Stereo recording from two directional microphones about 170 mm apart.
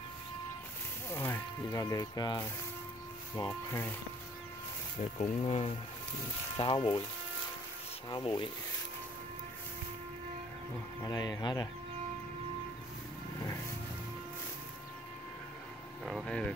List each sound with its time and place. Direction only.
1.1 s speech: 15° left (ahead or behind)
5.1 s speech: 40° left (ahead or behind)
8.1 s speech: 25° left (ahead or behind)
11.1 s speech: 20° left (ahead or behind)
16.1 s speech: 5° left (ahead or behind)